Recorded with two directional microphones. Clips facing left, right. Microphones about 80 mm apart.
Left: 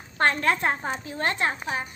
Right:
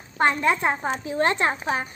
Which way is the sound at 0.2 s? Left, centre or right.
Centre.